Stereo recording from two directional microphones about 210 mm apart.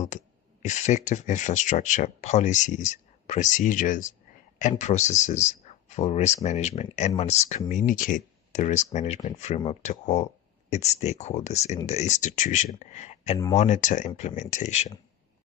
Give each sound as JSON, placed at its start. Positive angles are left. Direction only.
{"t": 0.0, "sound": "speech", "side_deg": 35}